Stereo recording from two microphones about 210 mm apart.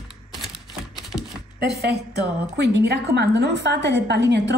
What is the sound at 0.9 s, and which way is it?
Shuffling cards, centre (ahead or behind).